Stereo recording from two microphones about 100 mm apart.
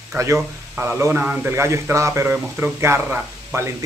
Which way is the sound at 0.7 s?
20° right (ahead or behind).